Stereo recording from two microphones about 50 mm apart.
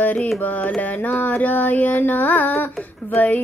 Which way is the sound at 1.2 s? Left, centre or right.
Left.